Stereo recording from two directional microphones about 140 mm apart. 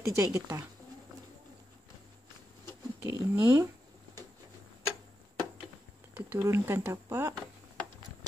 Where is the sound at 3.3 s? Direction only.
15° right (ahead or behind).